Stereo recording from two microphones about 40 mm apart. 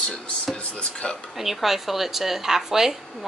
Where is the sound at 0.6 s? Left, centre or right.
Left.